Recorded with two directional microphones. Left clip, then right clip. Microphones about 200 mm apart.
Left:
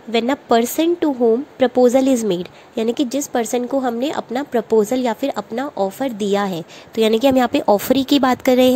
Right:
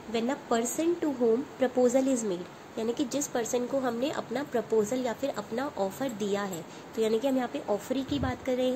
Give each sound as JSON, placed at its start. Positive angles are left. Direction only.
{"t": 0.1, "sound": "a woman's voice", "side_deg": 40}